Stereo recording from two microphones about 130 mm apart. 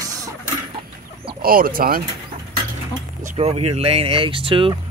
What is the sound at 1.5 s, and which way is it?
Speech, 90° right.